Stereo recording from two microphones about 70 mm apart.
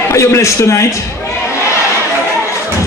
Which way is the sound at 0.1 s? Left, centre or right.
Left.